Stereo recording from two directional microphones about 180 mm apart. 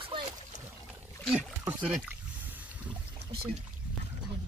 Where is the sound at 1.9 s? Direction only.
5° right (ahead or behind).